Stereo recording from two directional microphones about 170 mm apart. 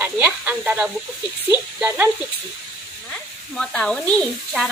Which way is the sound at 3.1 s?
5° left (ahead or behind).